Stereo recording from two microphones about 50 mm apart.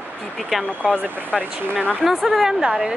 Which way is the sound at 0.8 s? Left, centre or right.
Centre.